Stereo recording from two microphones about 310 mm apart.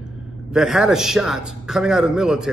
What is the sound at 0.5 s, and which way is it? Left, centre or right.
A man's voice, centre.